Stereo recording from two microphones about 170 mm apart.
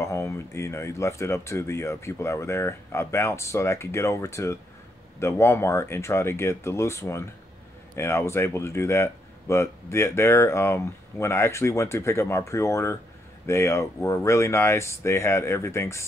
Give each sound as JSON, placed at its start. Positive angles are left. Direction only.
{"t": 0.0, "sound": "speech", "side_deg": 15}